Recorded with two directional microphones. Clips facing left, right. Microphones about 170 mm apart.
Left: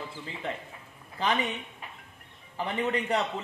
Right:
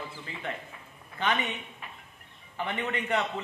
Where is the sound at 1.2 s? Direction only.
30° left (ahead or behind).